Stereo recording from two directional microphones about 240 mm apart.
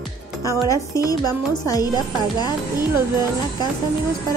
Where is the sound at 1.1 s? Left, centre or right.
Centre.